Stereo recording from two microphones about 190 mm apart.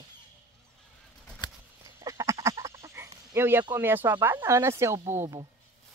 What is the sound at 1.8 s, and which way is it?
Duck, 15° right (ahead or behind).